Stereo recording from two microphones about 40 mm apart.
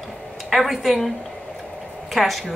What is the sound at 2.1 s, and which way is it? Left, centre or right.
Speech, centre.